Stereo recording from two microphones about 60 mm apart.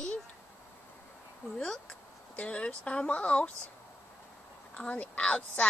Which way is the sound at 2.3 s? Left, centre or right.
Centre.